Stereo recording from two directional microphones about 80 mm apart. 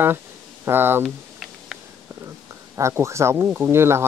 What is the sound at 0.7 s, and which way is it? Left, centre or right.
Speech, right.